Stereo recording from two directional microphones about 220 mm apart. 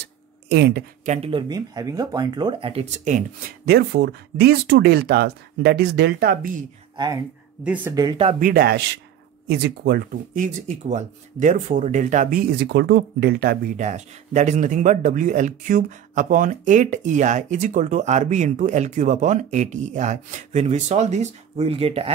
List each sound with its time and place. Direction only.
0.0 s a sound: 50° right (ahead or behind)
1.0 s speech: 30° right (ahead or behind)
7.6 s speech: 10° right (ahead or behind); by 22.1 s 25° right (ahead or behind)